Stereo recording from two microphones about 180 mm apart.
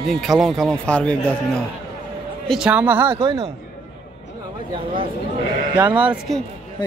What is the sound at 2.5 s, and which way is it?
Speech, 5° right (ahead or behind).